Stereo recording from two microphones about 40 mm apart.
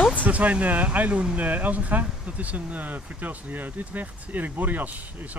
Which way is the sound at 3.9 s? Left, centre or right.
Right.